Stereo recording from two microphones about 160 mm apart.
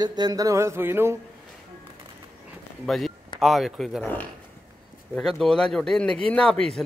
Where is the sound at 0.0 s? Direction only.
25° right (ahead or behind).